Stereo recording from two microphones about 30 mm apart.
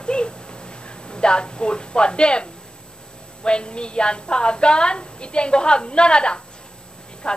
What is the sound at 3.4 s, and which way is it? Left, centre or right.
A woman's voice, left.